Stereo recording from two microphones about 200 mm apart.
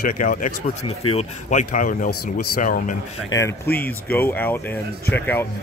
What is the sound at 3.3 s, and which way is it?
Speech, 15° left (ahead or behind).